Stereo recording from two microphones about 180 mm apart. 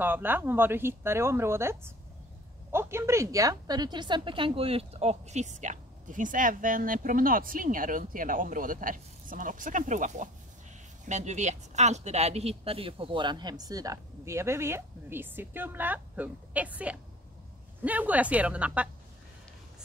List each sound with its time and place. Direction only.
0.0 s a woman's voice: 10° right (ahead or behind)